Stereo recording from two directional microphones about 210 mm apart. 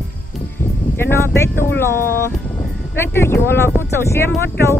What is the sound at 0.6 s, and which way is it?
Speech, 10° left (ahead or behind).